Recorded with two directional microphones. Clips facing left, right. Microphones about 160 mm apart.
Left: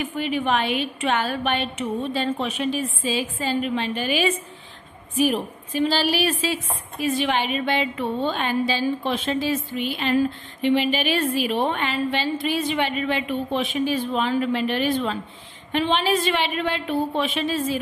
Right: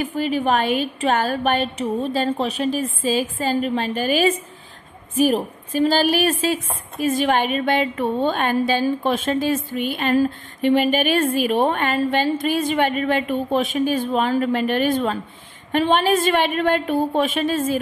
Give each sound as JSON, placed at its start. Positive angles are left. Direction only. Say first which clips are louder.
{"t": 0.0, "sound": "a woman's voice", "louder": "right 3 dB", "side_deg": -40}